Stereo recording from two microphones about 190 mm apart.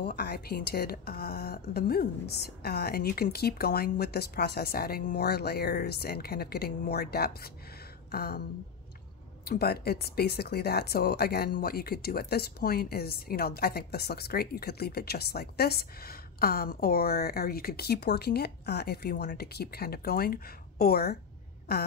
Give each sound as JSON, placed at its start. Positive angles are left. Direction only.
{"t": 0.0, "sound": "speech", "side_deg": 60}